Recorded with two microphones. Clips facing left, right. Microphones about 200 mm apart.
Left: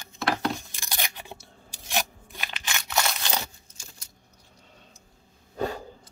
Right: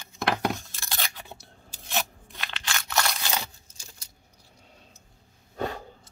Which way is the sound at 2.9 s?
Centre (ahead or behind).